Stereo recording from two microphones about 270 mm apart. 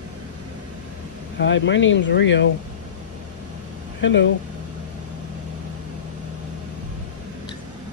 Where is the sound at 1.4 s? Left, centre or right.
Left.